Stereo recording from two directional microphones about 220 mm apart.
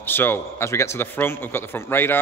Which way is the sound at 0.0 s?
10° left (ahead or behind).